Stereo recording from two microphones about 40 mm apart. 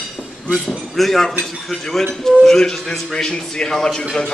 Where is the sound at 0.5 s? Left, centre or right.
Centre.